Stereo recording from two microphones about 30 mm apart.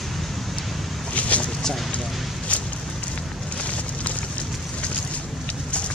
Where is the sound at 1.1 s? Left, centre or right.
Left.